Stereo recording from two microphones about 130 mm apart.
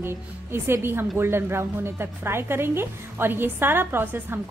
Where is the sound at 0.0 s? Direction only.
20° right (ahead or behind).